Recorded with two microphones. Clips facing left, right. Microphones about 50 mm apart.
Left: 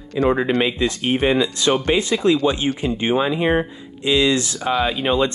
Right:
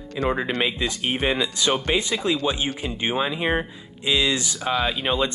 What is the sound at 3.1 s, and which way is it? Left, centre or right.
Speech, centre.